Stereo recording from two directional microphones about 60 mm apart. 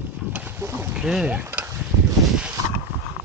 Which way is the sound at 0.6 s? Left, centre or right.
Right.